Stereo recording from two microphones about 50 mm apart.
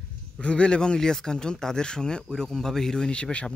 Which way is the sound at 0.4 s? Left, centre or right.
Left.